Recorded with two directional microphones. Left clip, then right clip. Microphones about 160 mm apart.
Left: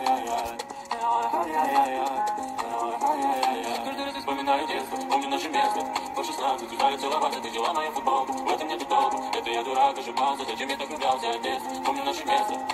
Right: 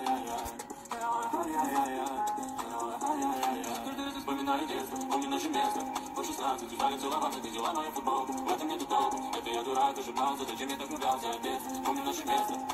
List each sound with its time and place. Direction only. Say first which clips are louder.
1.6 s music: left 9 dB; 30° left (ahead or behind)
4.3 s a sound: left 7 dB; 35° left (ahead or behind)
5.1 s music: left 7 dB; 35° left (ahead or behind)
6.4 s speech: left 7 dB; 30° left (ahead or behind)